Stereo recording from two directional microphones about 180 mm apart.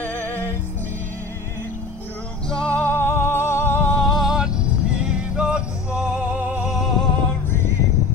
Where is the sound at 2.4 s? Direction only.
5° left (ahead or behind).